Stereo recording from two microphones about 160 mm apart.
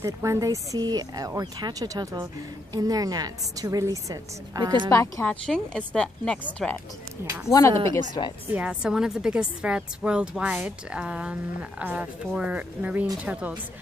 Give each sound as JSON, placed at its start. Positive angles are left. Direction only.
{"t": 0.0, "sound": "speech", "side_deg": -20}
{"t": 4.9, "sound": "speech", "side_deg": 20}
{"t": 8.5, "sound": "a woman's voice", "side_deg": -5}